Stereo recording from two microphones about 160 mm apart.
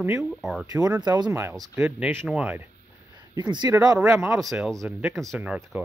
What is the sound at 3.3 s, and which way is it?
Speech, 25° right (ahead or behind).